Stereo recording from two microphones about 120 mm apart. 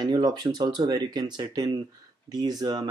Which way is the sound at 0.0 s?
35° right (ahead or behind).